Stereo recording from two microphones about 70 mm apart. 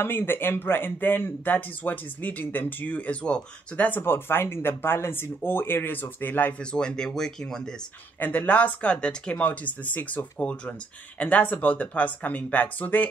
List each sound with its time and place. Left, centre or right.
0.0 s speech: left
4.0 s speech: left
6.6 s speech: centre
8.2 s speech: left